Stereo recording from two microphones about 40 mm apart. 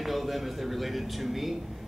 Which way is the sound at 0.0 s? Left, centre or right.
Centre.